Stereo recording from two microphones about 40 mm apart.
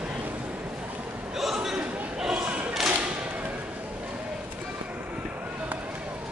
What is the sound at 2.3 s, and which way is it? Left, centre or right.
Thump, right.